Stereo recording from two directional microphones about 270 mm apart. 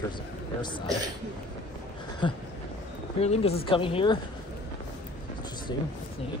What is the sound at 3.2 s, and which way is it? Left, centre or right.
Speech, left.